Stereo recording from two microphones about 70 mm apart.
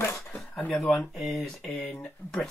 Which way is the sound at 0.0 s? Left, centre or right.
Left.